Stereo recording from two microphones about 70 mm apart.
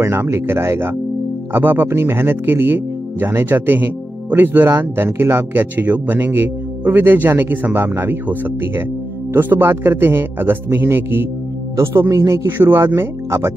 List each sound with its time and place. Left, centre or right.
0.0 s a man's voice: right
12.4 s a man's voice: right